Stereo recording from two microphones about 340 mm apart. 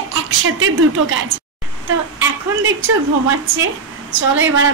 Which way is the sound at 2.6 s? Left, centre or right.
Right.